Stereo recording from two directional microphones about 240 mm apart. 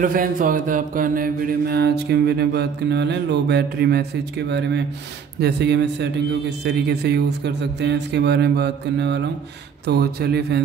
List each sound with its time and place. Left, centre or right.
0.0 s mantra: right
9.8 s speech: right